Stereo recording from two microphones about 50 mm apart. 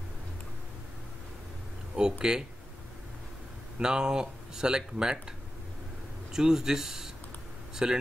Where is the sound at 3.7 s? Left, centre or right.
Centre.